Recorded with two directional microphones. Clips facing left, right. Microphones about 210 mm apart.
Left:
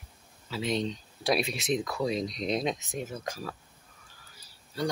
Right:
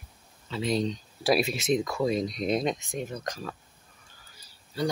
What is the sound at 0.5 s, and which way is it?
Speech, centre (ahead or behind).